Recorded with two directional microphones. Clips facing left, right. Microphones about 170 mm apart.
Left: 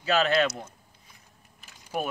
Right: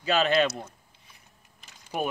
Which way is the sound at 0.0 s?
15° right (ahead or behind).